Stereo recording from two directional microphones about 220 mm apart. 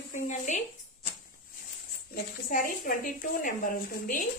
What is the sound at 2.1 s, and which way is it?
A woman's voice, 40° left (ahead or behind).